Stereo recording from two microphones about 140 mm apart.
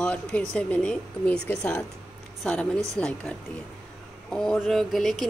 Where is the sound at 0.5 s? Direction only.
5° left (ahead or behind).